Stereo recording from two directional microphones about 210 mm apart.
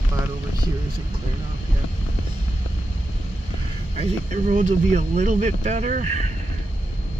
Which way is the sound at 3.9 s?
35° right (ahead or behind).